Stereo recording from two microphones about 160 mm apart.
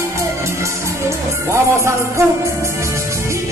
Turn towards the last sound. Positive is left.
turn(degrees=-15)  # may be behind; listen again after turning